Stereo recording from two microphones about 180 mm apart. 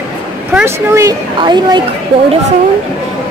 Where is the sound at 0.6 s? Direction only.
15° right (ahead or behind).